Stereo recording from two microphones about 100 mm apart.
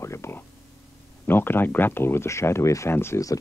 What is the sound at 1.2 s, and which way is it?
Speech, 20° left (ahead or behind).